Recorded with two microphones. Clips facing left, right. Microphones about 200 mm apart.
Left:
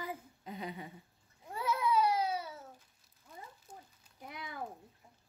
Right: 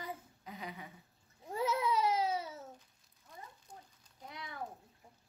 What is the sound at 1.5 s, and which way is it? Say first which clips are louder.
Baby cry: left 1 dB; 20° right (ahead or behind).